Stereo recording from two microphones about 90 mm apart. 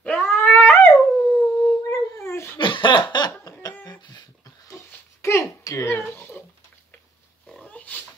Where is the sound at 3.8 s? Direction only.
50° left (ahead or behind).